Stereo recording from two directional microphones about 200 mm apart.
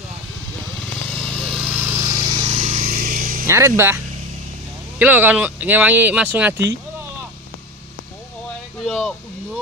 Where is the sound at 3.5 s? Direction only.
15° right (ahead or behind).